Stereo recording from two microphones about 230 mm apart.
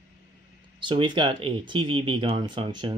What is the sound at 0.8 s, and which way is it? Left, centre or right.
Speech, right.